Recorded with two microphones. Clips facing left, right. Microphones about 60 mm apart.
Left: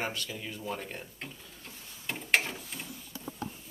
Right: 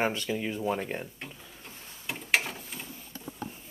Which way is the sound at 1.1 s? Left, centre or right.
Centre.